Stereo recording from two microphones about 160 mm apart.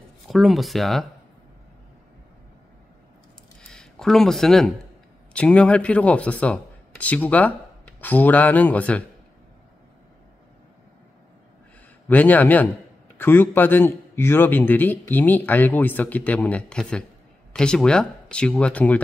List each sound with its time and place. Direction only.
0.3 s speech: centre (ahead or behind)
3.6 s speech: 5° left (ahead or behind)
12.1 s a man's voice: 10° left (ahead or behind)